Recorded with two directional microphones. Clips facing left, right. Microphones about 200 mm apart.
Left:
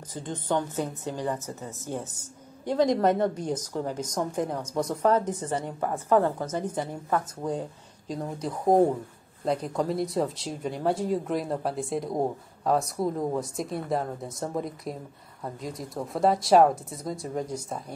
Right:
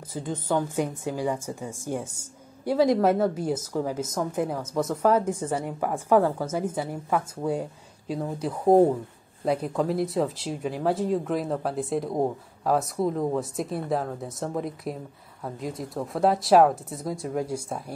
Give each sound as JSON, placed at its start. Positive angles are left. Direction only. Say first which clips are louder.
{"t": 0.1, "sound": "speech", "louder": "right 2 dB", "side_deg": -5}